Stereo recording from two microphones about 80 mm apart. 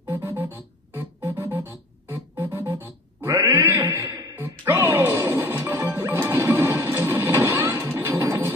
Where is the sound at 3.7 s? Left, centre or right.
Right.